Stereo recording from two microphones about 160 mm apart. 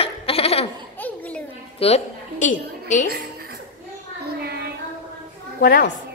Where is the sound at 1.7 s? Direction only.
40° left (ahead or behind).